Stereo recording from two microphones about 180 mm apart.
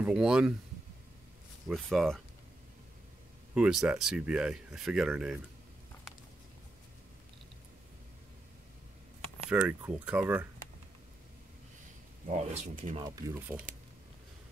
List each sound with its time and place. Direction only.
0.0 s speech: 5° right (ahead or behind)
1.7 s speech: centre (ahead or behind)
3.5 s speech: 5° right (ahead or behind)
9.5 s speech: 10° right (ahead or behind)
12.3 s speech: 40° right (ahead or behind)
12.9 s speech: 20° right (ahead or behind)